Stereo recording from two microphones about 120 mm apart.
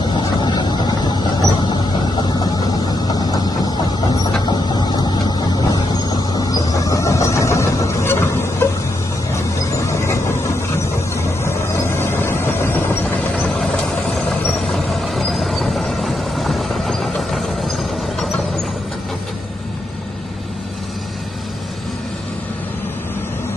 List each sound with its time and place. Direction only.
0.4 s vehicle: 40° left (ahead or behind)
3.1 s vehicle: 35° left (ahead or behind)
11.4 s vehicle: 20° left (ahead or behind)
14.7 s vehicle: centre (ahead or behind)